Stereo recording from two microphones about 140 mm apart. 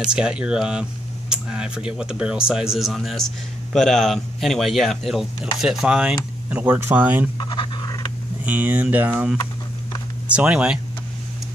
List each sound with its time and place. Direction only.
0.0 s speech: 5° right (ahead or behind)
7.3 s pant: 30° left (ahead or behind)
8.5 s speech: 10° right (ahead or behind)